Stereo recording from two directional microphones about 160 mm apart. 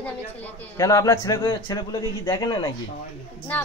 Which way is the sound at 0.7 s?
20° left (ahead or behind).